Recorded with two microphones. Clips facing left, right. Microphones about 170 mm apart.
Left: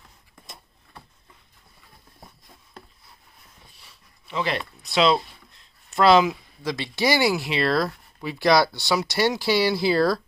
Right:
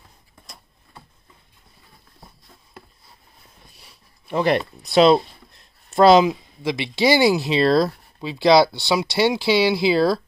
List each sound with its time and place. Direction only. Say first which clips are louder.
4.3 s speech: right 7 dB; 50° right (ahead or behind)
6.2 s speech: right 4 dB; 20° right (ahead or behind)
7.4 s speech: right 6 dB; 30° right (ahead or behind)
8.8 s speech: right 3 dB; 15° right (ahead or behind)